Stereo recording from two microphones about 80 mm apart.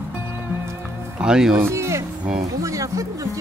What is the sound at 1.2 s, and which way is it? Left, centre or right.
Speech, centre.